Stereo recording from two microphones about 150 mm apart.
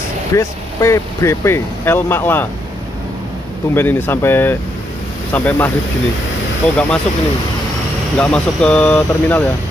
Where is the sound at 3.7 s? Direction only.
15° left (ahead or behind).